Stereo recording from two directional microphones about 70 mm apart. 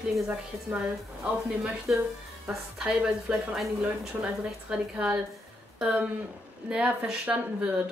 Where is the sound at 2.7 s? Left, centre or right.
Centre.